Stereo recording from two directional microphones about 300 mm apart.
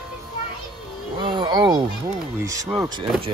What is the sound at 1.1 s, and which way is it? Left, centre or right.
Speech, centre.